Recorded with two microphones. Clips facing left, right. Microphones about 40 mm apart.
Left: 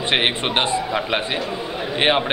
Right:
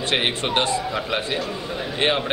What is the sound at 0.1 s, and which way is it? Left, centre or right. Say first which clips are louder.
A man's voice: left 2 dB; left.